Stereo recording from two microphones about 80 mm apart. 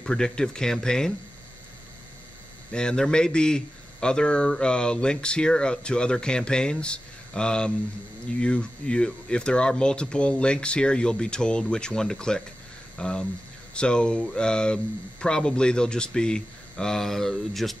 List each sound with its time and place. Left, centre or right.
0.0 s speech: centre
2.7 s speech: centre